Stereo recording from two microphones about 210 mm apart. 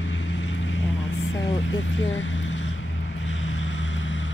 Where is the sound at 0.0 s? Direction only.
60° left (ahead or behind).